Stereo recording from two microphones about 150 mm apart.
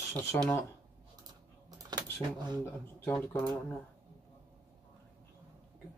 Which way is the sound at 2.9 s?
15° left (ahead or behind).